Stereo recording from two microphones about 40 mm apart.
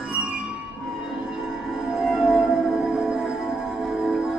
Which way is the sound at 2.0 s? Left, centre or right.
Centre.